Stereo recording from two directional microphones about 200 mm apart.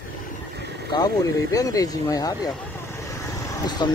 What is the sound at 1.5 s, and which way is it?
Speech, 15° left (ahead or behind).